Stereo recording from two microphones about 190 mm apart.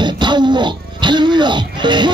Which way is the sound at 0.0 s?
25° right (ahead or behind).